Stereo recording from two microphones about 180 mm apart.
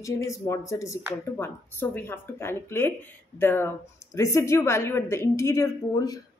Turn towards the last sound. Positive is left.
turn(degrees=20)  # may be behind; listen again after turning